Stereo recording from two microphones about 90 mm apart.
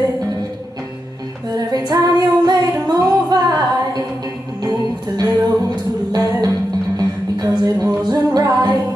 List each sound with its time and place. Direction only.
1.5 s female singing: 50° right (ahead or behind)
4.6 s music: 45° right (ahead or behind)